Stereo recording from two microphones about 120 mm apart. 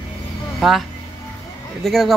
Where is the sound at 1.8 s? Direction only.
Centre (ahead or behind).